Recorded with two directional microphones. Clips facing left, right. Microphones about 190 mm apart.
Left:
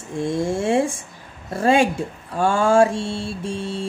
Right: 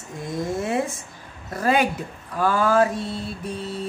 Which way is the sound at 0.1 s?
30° left (ahead or behind).